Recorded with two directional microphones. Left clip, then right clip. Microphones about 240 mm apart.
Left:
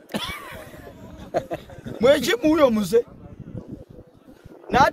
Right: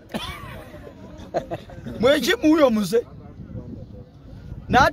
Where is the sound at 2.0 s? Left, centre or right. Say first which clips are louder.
Even; centre.